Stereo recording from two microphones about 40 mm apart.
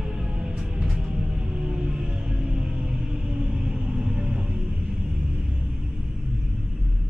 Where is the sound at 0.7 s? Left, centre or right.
Right.